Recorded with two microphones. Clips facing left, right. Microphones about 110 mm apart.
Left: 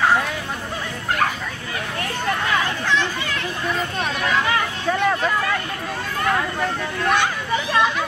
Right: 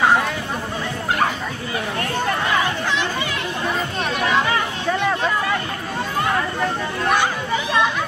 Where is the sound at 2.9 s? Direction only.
15° right (ahead or behind).